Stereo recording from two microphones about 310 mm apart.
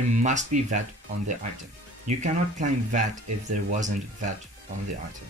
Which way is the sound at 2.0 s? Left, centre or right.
Right.